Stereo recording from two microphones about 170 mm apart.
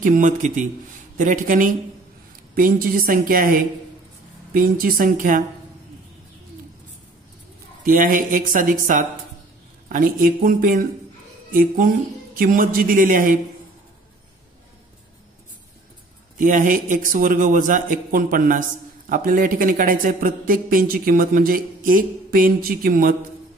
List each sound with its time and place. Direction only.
0.0 s a woman's voice: 50° right (ahead or behind)
7.8 s a woman's voice: 55° right (ahead or behind)
16.3 s a man's voice: 50° right (ahead or behind)